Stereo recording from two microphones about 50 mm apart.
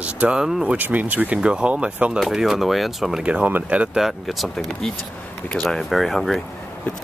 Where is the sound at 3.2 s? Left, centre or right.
Right.